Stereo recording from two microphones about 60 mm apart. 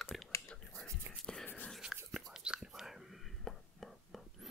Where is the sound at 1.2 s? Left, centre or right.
Centre.